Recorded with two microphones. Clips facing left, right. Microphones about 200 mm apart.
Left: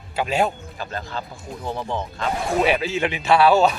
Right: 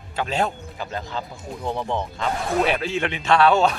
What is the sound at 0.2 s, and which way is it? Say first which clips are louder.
Speech: left 2 dB; 10° left (ahead or behind).